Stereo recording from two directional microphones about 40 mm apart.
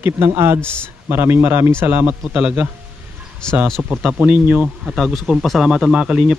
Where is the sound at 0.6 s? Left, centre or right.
Left.